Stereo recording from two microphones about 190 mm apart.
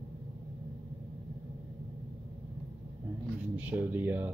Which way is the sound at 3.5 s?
10° right (ahead or behind).